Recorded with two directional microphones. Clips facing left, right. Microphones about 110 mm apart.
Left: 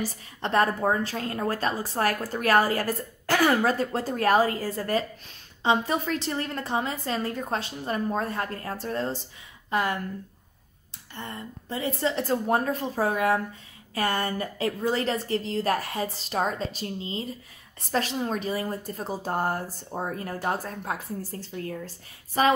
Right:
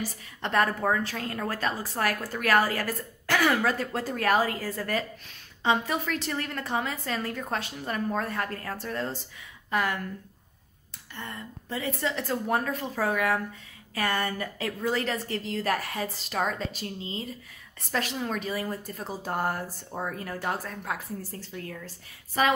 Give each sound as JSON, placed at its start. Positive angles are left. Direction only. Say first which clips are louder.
{"t": 0.4, "sound": "a woman's voice", "louder": "left 2 dB", "side_deg": 30}
{"t": 11.1, "sound": "a woman's voice", "louder": "left 2 dB", "side_deg": 25}